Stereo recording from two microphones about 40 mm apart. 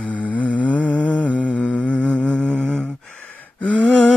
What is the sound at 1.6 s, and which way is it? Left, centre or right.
Humming, left.